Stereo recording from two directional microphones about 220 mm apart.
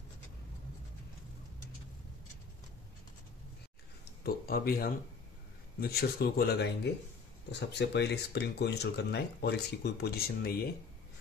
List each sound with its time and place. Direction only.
4.2 s speech: 45° left (ahead or behind)